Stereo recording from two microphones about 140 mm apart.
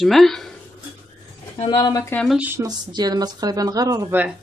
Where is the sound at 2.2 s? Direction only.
10° right (ahead or behind).